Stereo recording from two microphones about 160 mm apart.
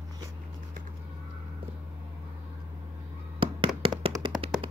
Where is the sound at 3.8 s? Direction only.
35° right (ahead or behind).